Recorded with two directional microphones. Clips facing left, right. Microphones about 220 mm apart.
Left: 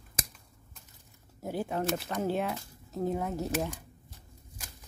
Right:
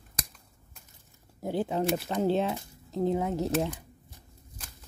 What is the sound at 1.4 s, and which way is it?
Speech, 20° right (ahead or behind).